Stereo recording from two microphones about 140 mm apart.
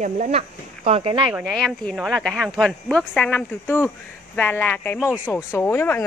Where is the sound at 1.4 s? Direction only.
5° left (ahead or behind).